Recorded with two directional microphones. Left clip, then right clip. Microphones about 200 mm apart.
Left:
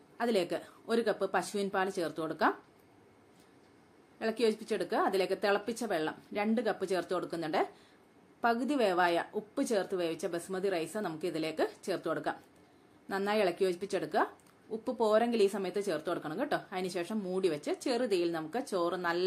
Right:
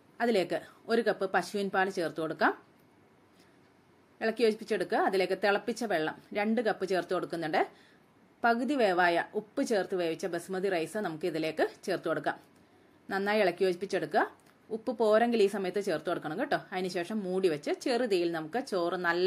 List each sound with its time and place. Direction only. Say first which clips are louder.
0.2 s speech: right 3 dB; 10° right (ahead or behind)
4.2 s speech: right 3 dB; 10° right (ahead or behind)